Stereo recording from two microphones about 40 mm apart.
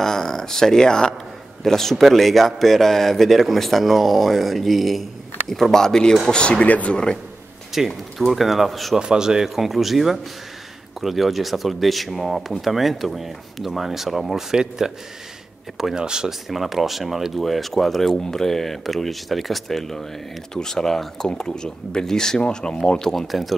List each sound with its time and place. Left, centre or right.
0.0 s speech: centre
6.6 s speech: left
7.7 s speech: centre
8.9 s speech: centre
14.5 s speech: centre
15.9 s speech: centre
16.3 s speech: centre
23.2 s speech: centre